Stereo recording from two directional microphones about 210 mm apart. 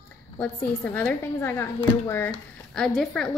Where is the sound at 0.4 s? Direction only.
5° left (ahead or behind).